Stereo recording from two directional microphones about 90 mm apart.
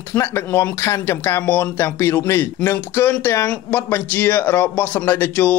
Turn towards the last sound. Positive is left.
turn(degrees=20)  # may be behind; listen again after turning